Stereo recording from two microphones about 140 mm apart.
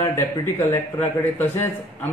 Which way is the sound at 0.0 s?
20° left (ahead or behind).